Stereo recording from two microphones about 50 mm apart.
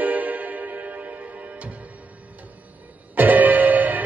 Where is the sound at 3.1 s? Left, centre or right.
Right.